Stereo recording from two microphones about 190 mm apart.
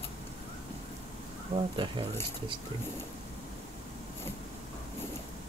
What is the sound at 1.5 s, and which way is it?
Speech, 25° right (ahead or behind).